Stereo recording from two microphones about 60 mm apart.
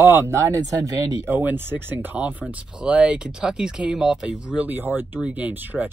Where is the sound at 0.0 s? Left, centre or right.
Right.